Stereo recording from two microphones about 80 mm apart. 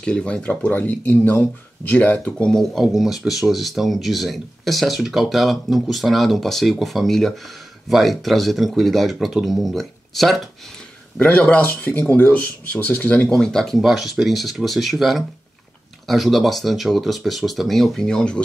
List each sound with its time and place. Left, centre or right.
0.0 s speech: centre
2.7 s speech: centre
11.1 s speech: centre
13.3 s speech: centre